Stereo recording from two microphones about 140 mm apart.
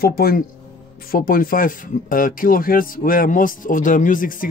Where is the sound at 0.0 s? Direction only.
90° left.